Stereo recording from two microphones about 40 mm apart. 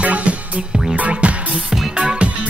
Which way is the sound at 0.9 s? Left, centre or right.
Right.